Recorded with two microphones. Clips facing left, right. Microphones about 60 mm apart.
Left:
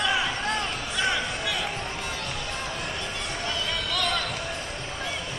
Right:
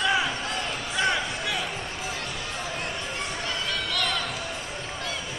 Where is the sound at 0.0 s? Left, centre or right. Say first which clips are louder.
Right 1 dB; centre.